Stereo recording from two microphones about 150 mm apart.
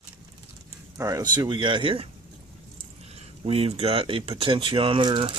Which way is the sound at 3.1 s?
40° right (ahead or behind).